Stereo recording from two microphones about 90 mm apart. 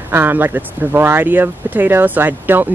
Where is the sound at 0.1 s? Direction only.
20° right (ahead or behind).